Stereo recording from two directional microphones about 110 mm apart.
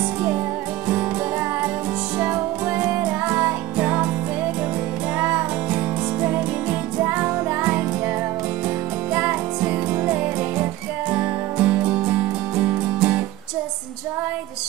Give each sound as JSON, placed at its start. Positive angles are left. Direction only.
{"t": 2.1, "sound": "music", "side_deg": -15}
{"t": 5.2, "sound": "music", "side_deg": -15}
{"t": 7.0, "sound": "music", "side_deg": -20}
{"t": 9.1, "sound": "music", "side_deg": -15}